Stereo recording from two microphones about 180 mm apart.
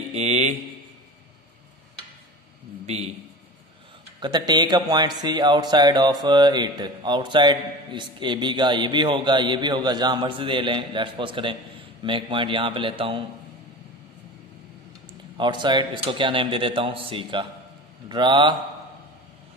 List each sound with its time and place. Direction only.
0.1 s speech: 40° right (ahead or behind)
4.2 s speech: 25° right (ahead or behind)
15.3 s speech: 25° right (ahead or behind)